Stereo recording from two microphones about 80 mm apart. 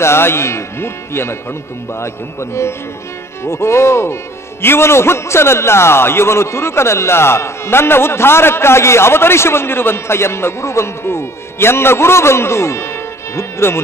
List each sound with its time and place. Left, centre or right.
0.0 s a man's voice: left
3.4 s a man's voice: left